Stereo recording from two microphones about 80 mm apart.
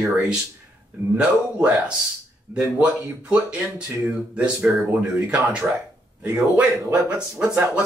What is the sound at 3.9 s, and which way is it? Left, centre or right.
Speech, right.